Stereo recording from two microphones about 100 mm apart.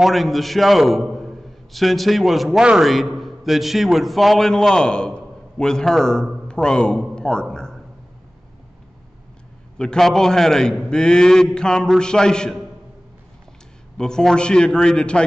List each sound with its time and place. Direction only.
0.0 s a man's voice: centre (ahead or behind)
7.5 s a sound: 5° left (ahead or behind)
9.8 s a man's voice: 5° left (ahead or behind)
13.9 s a man's voice: 5° left (ahead or behind)